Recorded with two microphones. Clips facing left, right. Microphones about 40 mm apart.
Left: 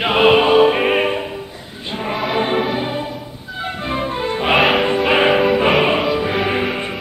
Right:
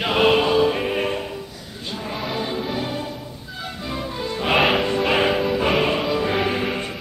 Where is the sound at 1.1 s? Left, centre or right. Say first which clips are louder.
Left 4 dB; left.